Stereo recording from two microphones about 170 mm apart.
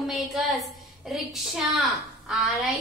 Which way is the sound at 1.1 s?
Centre (ahead or behind).